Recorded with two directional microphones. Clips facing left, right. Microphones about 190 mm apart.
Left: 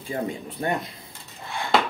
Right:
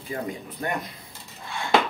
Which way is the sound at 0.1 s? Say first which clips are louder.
Left 3 dB; 30° left (ahead or behind).